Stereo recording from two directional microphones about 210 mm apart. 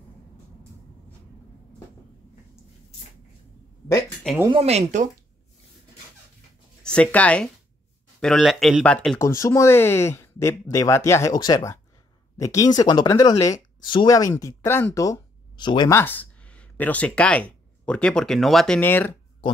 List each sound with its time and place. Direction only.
3.9 s a sound: 5° left (ahead or behind)
4.5 s speech: 30° right (ahead or behind)
6.8 s speech: 5° left (ahead or behind)